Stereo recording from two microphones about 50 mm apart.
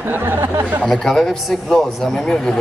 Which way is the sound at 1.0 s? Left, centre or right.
Centre.